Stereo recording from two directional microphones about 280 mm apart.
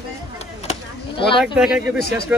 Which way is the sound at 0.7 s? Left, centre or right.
Centre.